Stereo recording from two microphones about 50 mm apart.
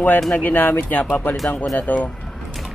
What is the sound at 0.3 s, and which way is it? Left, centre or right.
Speech, left.